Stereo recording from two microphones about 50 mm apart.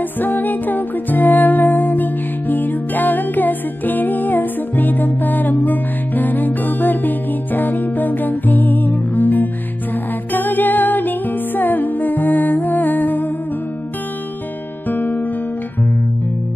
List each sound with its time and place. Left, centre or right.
0.2 s music: left
14.9 s music: left